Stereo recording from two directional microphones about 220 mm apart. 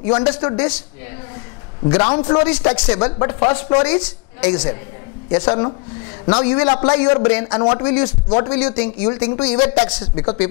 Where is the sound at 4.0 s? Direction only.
10° left (ahead or behind).